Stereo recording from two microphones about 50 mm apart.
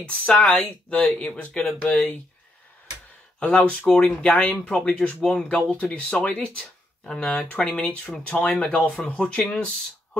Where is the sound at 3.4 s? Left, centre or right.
Left.